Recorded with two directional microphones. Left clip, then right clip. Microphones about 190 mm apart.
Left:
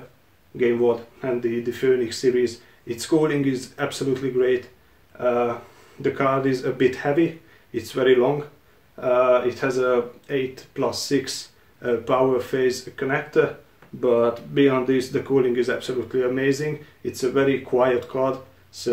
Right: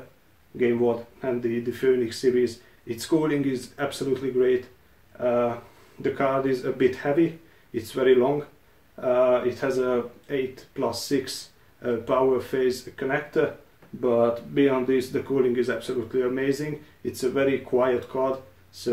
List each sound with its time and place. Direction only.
0.6 s speech: 20° left (ahead or behind)
6.1 s speech: 20° left (ahead or behind)